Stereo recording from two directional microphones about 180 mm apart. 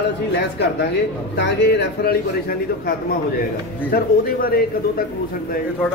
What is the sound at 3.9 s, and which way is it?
Speech, 55° left (ahead or behind).